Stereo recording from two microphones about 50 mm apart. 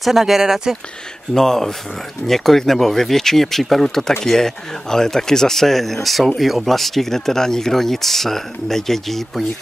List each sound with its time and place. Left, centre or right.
0.0 s speech: centre
1.3 s speech: centre